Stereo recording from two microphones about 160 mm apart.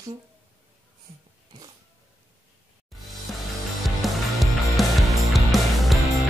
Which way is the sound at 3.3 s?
Centre (ahead or behind).